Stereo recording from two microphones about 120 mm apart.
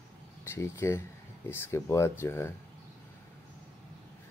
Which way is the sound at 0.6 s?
20° left (ahead or behind).